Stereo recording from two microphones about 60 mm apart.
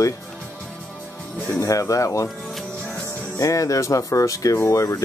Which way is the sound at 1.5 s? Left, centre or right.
Left.